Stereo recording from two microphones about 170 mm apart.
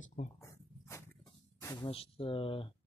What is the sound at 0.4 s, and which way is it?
Dog, 15° left (ahead or behind).